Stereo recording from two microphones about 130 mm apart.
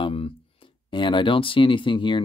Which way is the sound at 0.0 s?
45° left (ahead or behind).